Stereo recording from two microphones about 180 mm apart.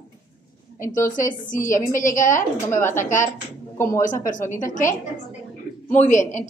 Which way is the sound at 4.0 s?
45° left (ahead or behind).